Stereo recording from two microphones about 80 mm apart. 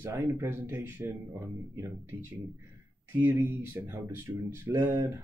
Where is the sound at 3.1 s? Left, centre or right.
Right.